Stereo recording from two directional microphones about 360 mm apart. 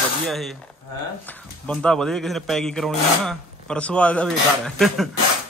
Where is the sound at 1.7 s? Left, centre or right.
Centre.